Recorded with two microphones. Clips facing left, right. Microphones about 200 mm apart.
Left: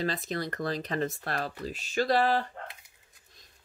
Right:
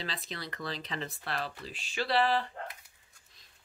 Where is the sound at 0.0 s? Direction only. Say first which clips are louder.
Left 9 dB; 45° left (ahead or behind).